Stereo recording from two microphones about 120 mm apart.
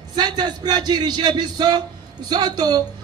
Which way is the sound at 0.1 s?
35° right (ahead or behind).